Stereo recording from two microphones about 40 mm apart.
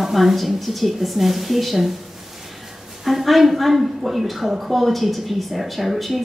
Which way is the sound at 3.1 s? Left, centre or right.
Centre.